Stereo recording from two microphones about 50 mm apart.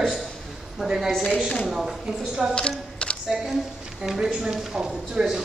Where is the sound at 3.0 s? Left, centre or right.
Left.